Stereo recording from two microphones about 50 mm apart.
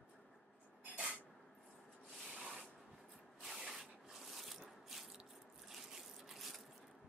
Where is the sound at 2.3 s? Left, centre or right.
Centre.